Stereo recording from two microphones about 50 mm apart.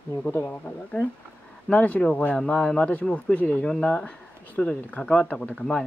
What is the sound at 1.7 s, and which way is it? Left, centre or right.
Speech, left.